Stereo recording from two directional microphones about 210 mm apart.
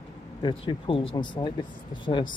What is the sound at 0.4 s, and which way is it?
Speech, 20° left (ahead or behind).